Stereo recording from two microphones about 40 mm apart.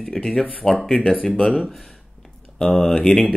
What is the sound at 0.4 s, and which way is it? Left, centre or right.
Speech, left.